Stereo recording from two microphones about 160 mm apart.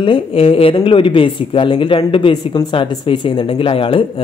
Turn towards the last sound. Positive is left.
turn(degrees=35)  # may be behind; listen again after turning